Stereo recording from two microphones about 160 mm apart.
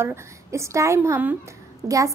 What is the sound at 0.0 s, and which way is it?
A child's voice, 15° right (ahead or behind).